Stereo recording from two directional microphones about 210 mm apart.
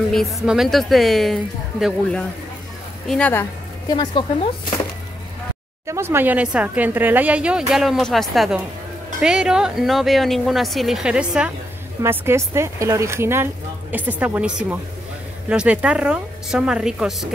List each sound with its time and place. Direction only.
0.1 s speech: centre (ahead or behind)
3.9 s speech: 20° left (ahead or behind)
5.9 s speech: 10° right (ahead or behind)